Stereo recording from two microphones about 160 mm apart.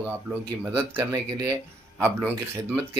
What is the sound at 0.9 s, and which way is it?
Speech, 25° right (ahead or behind).